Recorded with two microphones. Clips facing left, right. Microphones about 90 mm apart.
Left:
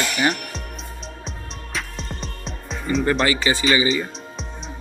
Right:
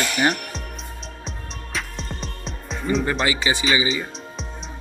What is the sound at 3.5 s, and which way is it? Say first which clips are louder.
Speech: left 2 dB; 20° right (ahead or behind).